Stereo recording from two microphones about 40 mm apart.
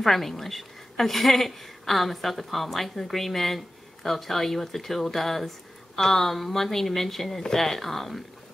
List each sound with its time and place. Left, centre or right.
0.0 s a woman's voice: centre